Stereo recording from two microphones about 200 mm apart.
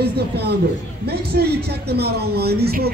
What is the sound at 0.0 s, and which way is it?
A man's voice, 55° right (ahead or behind).